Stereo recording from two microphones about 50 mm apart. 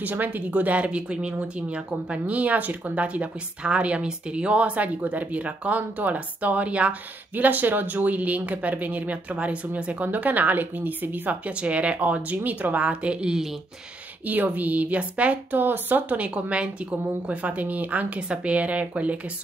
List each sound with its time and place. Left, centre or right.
0.0 s a woman's voice: right
11.5 s speech: right
14.2 s a woman's voice: right
15.5 s a woman's voice: right
16.2 s speech: right